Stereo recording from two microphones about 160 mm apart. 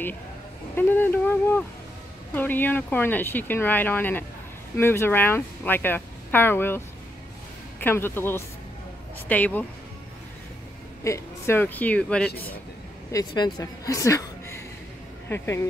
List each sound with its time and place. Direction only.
0.7 s speech: 10° left (ahead or behind)
7.8 s speech: 15° left (ahead or behind)
11.1 s speech: 15° left (ahead or behind)
13.1 s a woman's voice: 25° left (ahead or behind)